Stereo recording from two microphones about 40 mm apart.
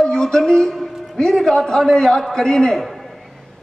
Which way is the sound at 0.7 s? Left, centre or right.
Centre.